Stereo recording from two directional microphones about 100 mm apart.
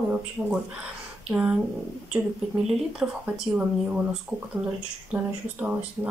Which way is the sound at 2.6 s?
5° right (ahead or behind).